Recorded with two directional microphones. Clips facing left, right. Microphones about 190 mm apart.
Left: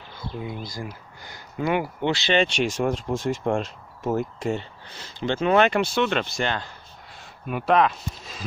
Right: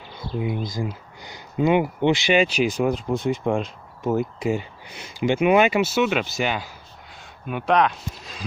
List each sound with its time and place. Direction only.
0.4 s speech: 20° right (ahead or behind)
2.3 s speech: 5° right (ahead or behind)